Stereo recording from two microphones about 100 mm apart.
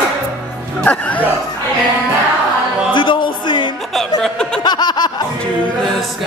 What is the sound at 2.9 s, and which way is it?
Music, 55° left (ahead or behind).